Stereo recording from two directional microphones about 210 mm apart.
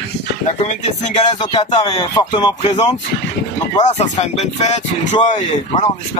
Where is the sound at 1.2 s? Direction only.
20° left (ahead or behind).